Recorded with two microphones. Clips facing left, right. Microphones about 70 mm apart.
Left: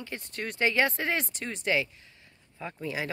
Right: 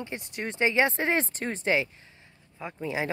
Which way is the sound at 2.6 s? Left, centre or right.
Centre.